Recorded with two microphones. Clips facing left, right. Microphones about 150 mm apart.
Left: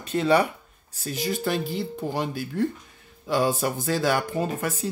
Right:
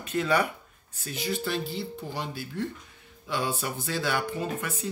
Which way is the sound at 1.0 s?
40° left (ahead or behind).